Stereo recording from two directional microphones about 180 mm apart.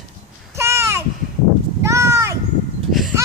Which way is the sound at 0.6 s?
15° right (ahead or behind).